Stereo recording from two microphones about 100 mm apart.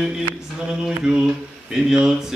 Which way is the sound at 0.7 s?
10° right (ahead or behind).